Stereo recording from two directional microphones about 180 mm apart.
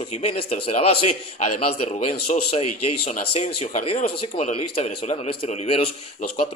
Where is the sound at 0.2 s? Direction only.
35° left (ahead or behind).